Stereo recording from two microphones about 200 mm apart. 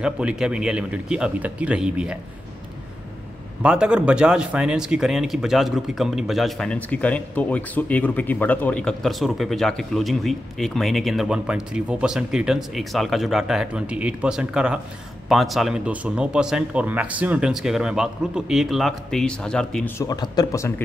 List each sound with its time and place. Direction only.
0.0 s speech: 5° right (ahead or behind)
3.6 s speech: 5° right (ahead or behind)
20.0 s speech: 20° left (ahead or behind)